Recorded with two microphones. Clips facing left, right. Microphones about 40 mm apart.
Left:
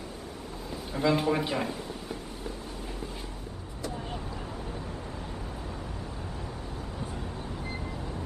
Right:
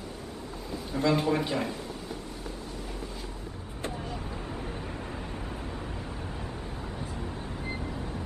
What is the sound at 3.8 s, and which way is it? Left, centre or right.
Vehicle, right.